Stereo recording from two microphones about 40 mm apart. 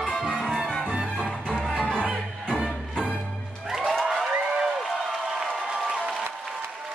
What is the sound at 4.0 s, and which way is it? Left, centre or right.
Music, centre.